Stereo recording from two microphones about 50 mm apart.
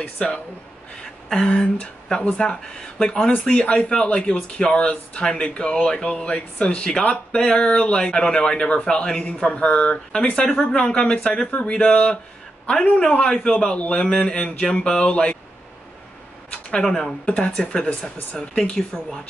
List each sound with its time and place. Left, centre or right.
0.0 s speech: centre
16.8 s speech: centre; by 18.6 s left
18.9 s speech: centre